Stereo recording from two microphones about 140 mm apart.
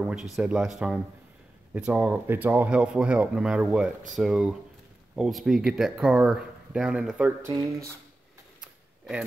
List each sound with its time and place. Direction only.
0.0 s speech: 5° right (ahead or behind)
7.4 s speech: 25° right (ahead or behind)
8.5 s camera: 5° right (ahead or behind)